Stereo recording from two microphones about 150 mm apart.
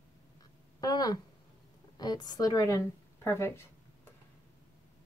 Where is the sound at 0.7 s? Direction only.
25° left (ahead or behind).